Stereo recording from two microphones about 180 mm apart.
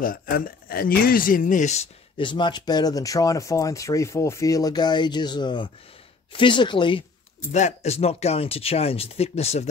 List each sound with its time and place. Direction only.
0.0 s speech: 55° left (ahead or behind); by 7.1 s 25° left (ahead or behind)
7.4 s speech: 40° left (ahead or behind)